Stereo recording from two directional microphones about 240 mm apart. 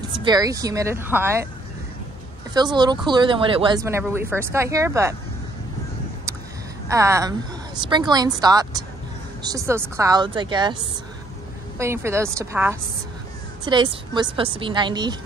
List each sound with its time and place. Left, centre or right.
0.1 s speech: centre
2.5 s speech: centre
6.9 s speech: centre
11.8 s a woman's voice: centre